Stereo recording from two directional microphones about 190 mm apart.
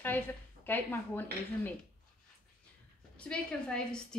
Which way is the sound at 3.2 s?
5° left (ahead or behind).